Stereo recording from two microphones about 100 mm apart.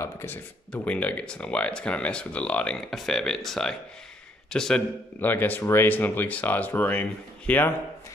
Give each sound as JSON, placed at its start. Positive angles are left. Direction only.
{"t": 0.0, "sound": "a sound", "side_deg": 25}
{"t": 0.7, "sound": "speech", "side_deg": 15}
{"t": 5.2, "sound": "speech", "side_deg": 20}